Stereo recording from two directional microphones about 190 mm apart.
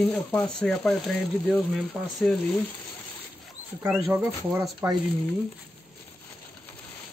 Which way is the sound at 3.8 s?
15° right (ahead or behind).